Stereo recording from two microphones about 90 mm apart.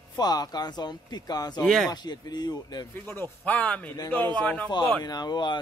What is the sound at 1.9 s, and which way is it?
Speech, 50° left (ahead or behind).